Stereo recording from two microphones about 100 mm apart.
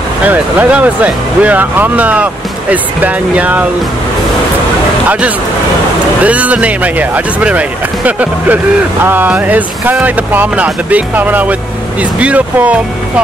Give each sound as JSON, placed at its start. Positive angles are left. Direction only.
{"t": 0.2, "sound": "speech", "side_deg": -15}
{"t": 6.2, "sound": "speech", "side_deg": -15}